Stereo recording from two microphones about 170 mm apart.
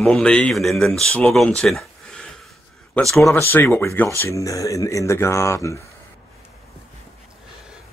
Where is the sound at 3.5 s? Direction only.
15° left (ahead or behind).